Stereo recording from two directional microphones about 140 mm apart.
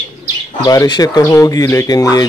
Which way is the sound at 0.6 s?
30° left (ahead or behind).